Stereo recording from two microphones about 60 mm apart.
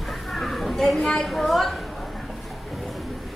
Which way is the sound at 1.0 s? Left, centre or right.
Centre.